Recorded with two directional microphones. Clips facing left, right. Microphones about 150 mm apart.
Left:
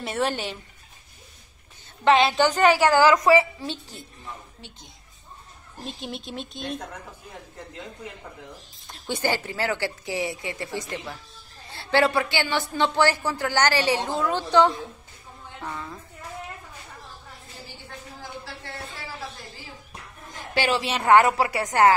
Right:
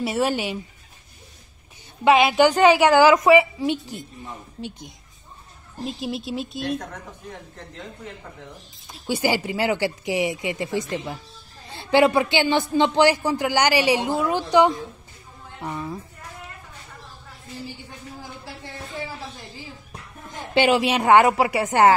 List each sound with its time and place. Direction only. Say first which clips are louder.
0.0 s speech: right 4 dB; 10° right (ahead or behind)
2.0 s speech: right 3 dB; 10° right (ahead or behind)
4.6 s speech: right 13 dB; 30° right (ahead or behind)
5.9 s speech: right 6 dB; 5° right (ahead or behind)
8.8 s speech: right 3 dB; 5° right (ahead or behind)
18.2 s a sound: even; 15° right (ahead or behind)
20.5 s speech: right 6 dB; 15° right (ahead or behind)